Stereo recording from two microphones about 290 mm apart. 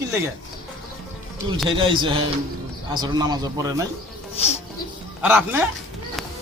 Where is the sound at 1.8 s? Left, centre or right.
Centre.